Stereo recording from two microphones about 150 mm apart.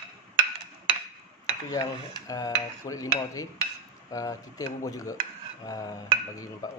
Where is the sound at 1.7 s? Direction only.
25° left (ahead or behind).